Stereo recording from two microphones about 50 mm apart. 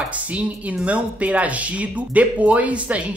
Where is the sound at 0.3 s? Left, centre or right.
Right.